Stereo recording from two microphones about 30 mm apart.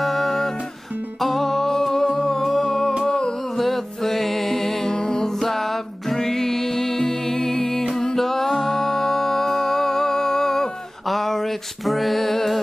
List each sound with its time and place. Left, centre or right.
0.0 s music: centre
1.2 s humming: centre
3.1 s humming: left
3.5 s music: centre
5.4 s music: centre
11.1 s a sound: centre